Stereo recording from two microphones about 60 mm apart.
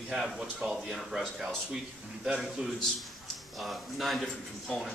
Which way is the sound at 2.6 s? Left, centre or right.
Centre.